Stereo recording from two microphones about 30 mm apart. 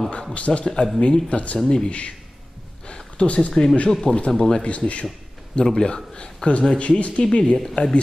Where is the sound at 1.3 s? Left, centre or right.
Left.